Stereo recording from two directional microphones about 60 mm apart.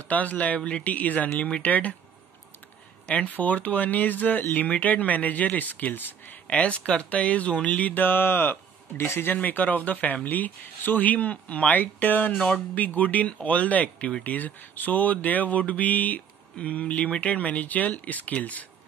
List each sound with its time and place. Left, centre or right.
0.0 s speech: left
3.1 s speech: left
6.4 s speech: left
9.4 s speech: left